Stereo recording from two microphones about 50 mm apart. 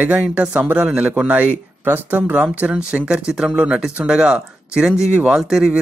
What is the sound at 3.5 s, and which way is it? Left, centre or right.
Speech, centre.